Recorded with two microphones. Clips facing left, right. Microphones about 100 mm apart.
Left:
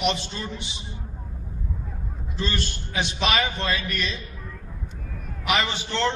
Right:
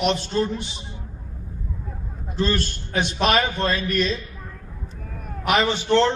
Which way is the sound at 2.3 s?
45° right (ahead or behind).